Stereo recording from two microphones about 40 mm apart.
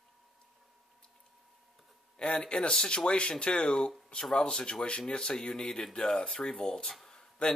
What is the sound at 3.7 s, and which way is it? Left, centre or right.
Speech, centre.